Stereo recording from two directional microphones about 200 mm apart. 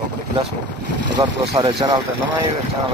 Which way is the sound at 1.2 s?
25° right (ahead or behind).